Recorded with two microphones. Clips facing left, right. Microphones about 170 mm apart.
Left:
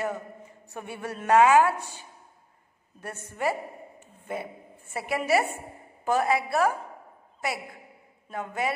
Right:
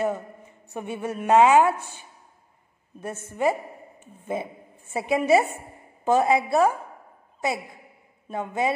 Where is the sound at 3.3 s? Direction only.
20° right (ahead or behind).